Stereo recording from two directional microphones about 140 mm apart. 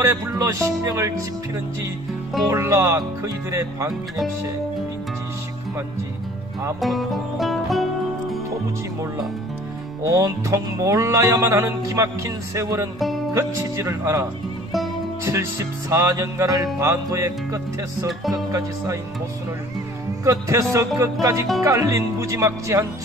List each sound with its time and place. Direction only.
0.0 s speech: 20° right (ahead or behind)
2.4 s speech: 20° right (ahead or behind)
6.8 s music: centre (ahead or behind)
10.0 s speech: 20° right (ahead or behind)
15.9 s speech: 20° right (ahead or behind)
20.2 s speech: 25° right (ahead or behind)